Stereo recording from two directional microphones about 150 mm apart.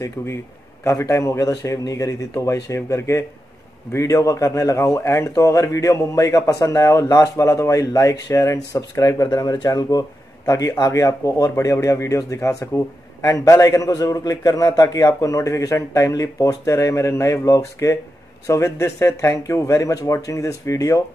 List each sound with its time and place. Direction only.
0.0 s a man's voice: 15° left (ahead or behind)